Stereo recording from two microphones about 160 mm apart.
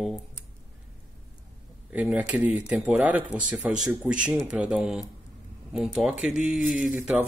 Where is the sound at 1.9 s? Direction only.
5° right (ahead or behind).